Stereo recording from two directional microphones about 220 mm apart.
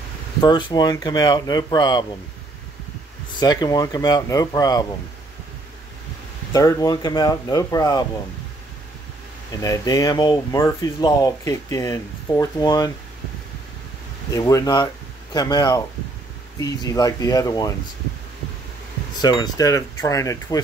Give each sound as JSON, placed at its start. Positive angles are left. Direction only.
{"t": 0.4, "sound": "speech", "side_deg": 20}
{"t": 3.3, "sound": "speech", "side_deg": 20}
{"t": 6.5, "sound": "speech", "side_deg": 15}
{"t": 9.6, "sound": "speech", "side_deg": 15}
{"t": 14.3, "sound": "speech", "side_deg": 15}
{"t": 19.2, "sound": "speech", "side_deg": 20}